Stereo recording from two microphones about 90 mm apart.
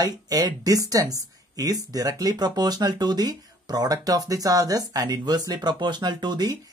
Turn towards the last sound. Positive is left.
turn(degrees=-50)  # may be behind; listen again after turning